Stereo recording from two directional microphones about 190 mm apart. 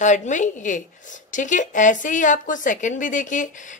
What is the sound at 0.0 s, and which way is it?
A woman's voice, 40° left (ahead or behind).